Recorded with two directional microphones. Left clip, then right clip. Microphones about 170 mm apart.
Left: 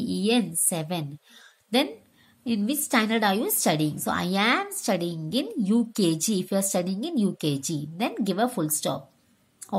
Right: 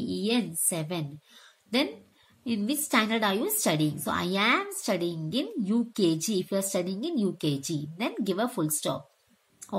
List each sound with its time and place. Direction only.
0.0 s a woman's voice: 30° left (ahead or behind)